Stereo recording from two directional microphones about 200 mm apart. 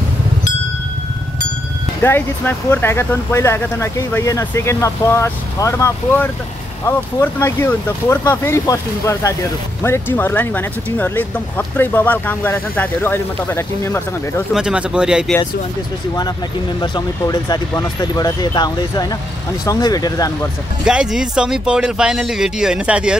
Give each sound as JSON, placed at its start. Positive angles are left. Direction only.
{"t": 2.0, "sound": "speech", "side_deg": 10}
{"t": 14.5, "sound": "speech", "side_deg": -5}
{"t": 16.8, "sound": "speech", "side_deg": 20}
{"t": 20.8, "sound": "speech", "side_deg": -5}